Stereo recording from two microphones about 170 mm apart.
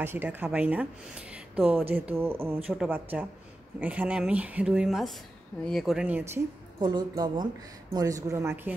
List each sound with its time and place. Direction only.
0.0 s speech: 10° right (ahead or behind)
6.8 s speech: 25° right (ahead or behind)